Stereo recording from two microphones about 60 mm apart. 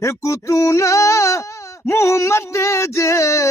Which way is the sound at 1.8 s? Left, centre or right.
Left.